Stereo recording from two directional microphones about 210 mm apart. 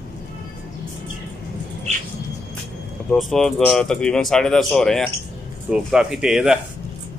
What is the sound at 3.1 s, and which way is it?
Speech, centre (ahead or behind).